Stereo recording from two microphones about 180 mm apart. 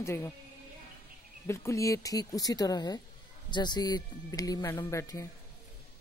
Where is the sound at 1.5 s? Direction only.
15° left (ahead or behind).